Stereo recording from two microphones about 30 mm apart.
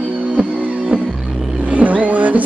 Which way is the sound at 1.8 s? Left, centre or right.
Right.